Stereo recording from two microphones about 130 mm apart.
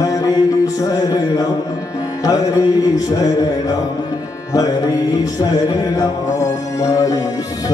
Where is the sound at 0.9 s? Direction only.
30° left (ahead or behind).